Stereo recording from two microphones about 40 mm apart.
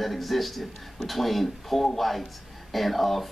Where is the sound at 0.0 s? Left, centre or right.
Centre.